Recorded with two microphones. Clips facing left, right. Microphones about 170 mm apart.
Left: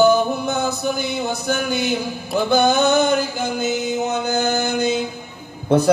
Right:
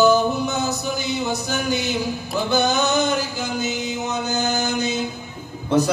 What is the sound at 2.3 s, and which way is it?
Music, 55° left (ahead or behind).